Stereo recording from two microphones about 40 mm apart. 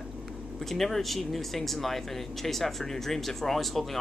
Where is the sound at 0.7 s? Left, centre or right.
Centre.